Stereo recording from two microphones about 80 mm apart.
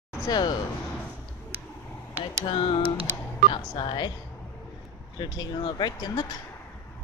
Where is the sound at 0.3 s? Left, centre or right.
Left.